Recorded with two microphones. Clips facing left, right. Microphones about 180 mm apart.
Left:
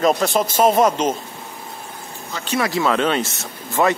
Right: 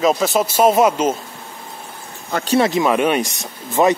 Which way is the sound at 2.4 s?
35° right (ahead or behind).